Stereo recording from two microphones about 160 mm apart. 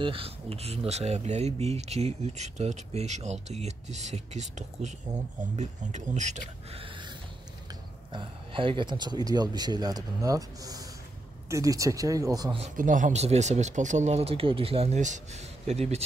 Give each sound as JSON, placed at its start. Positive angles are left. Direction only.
{"t": 0.0, "sound": "speech", "side_deg": -35}
{"t": 8.1, "sound": "speech", "side_deg": -30}
{"t": 12.7, "sound": "speech", "side_deg": -55}